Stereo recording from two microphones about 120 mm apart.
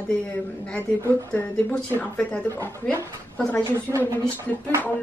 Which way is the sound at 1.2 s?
15° left (ahead or behind).